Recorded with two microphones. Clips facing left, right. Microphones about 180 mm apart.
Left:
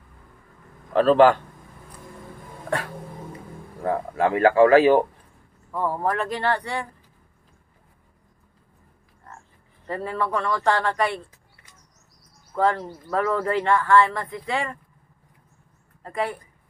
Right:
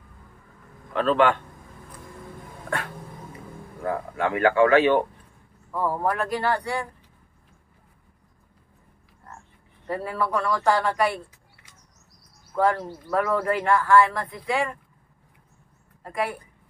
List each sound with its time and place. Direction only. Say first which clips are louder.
0.9 s speech: left 5 dB; 35° left (ahead or behind)
3.8 s speech: left 4 dB; 30° left (ahead or behind)
5.7 s speech: even; 5° right (ahead or behind)
9.8 s speech: even; 5° right (ahead or behind)
12.5 s speech: even; 5° right (ahead or behind)
16.0 s speech: left 1 dB; 5° right (ahead or behind)